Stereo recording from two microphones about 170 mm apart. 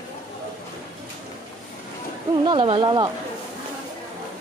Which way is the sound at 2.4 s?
30° right (ahead or behind).